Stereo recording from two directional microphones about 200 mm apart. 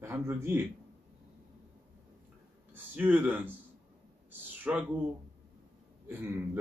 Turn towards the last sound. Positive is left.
turn(degrees=-10)  # may be behind; listen again after turning